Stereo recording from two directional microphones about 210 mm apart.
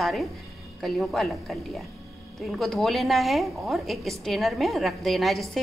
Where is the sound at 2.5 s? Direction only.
Centre (ahead or behind).